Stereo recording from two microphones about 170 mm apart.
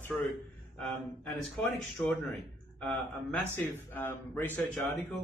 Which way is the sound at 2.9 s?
5° left (ahead or behind).